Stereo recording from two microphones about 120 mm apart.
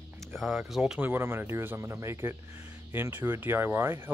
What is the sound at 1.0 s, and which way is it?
Speech, 20° right (ahead or behind).